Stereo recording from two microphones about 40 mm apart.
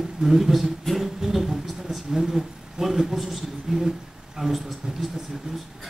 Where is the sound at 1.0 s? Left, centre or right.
Centre.